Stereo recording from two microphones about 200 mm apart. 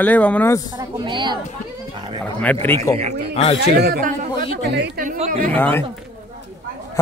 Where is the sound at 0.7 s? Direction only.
25° right (ahead or behind).